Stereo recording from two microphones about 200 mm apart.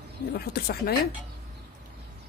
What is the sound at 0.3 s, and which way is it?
Speech, 50° left (ahead or behind).